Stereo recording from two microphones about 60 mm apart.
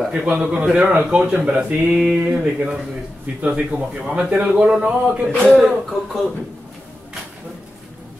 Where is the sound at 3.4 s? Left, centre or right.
Right.